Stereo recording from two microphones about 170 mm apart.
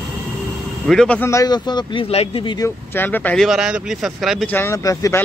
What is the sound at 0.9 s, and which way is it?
Speech, 5° left (ahead or behind).